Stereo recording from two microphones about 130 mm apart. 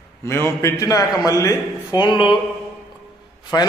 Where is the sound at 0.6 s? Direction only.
25° left (ahead or behind).